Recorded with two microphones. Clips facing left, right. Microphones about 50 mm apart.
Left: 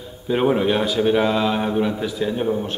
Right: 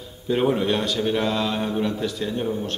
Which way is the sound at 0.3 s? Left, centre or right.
Centre.